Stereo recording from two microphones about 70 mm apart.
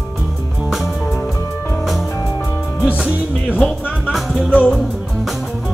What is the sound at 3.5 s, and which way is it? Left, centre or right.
Speech, centre.